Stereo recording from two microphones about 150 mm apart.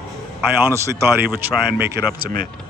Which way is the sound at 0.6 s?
20° right (ahead or behind).